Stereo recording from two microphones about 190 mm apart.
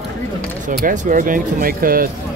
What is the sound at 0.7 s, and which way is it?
Speech, 45° right (ahead or behind).